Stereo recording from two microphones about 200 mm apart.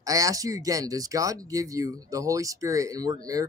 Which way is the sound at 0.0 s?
15° right (ahead or behind).